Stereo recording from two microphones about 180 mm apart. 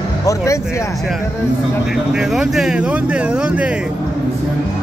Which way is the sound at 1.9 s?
Centre (ahead or behind).